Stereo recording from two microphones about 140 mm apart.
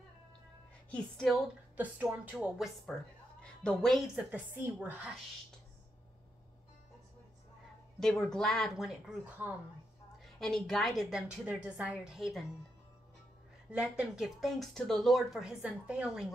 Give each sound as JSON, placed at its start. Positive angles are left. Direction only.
{"t": 0.8, "sound": "a woman's voice", "side_deg": 5}
{"t": 1.8, "sound": "speech", "side_deg": -10}
{"t": 3.6, "sound": "speech", "side_deg": 0}
{"t": 4.3, "sound": "speech", "side_deg": -15}
{"t": 8.0, "sound": "speech", "side_deg": 5}
{"t": 10.4, "sound": "speech", "side_deg": 5}
{"t": 13.7, "sound": "speech", "side_deg": -5}